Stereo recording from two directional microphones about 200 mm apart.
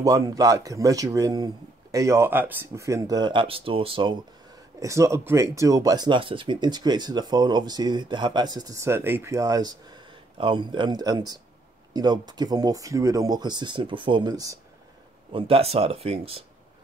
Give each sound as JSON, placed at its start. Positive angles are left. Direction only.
{"t": 0.0, "sound": "speech", "side_deg": -15}
{"t": 4.7, "sound": "speech", "side_deg": -15}